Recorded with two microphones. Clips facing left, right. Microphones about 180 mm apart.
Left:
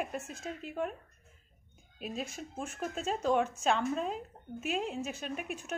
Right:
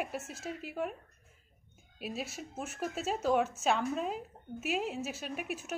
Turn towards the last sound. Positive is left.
turn(degrees=-5)  # may be behind; listen again after turning